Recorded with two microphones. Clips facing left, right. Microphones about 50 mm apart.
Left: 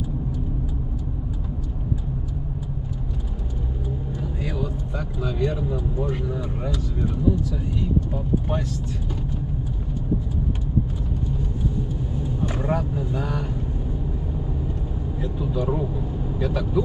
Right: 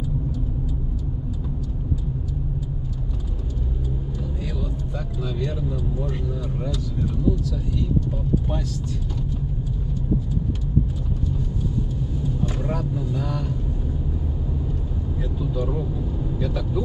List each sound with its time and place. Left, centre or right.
4.2 s speech: left
12.4 s speech: centre
16.3 s speech: centre